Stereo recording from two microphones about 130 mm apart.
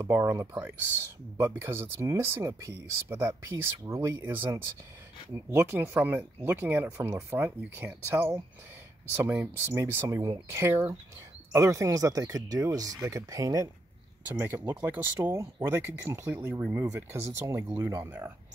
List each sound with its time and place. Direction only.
0.0 s speech: 20° right (ahead or behind)